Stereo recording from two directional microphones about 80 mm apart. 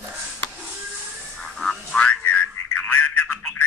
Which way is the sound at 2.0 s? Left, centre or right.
Centre.